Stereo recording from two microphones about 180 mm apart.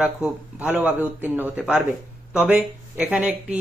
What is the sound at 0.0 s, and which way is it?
A man's voice, 5° right (ahead or behind).